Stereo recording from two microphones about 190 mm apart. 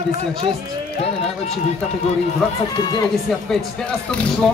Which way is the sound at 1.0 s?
30° left (ahead or behind).